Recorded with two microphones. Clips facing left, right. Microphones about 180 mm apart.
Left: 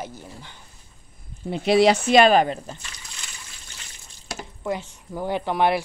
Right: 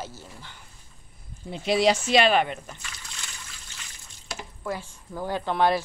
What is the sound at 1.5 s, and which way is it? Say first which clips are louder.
Speech: left 5 dB; 65° left (ahead or behind).